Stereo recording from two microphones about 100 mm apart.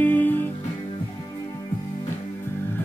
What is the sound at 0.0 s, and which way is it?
Music, 15° left (ahead or behind).